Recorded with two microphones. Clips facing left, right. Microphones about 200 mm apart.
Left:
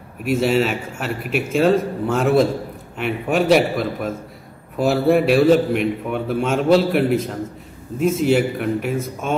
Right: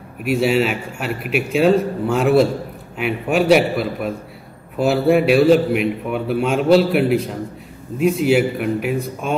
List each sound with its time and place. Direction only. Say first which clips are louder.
0.4 s a man's voice: right 1 dB; centre (ahead or behind)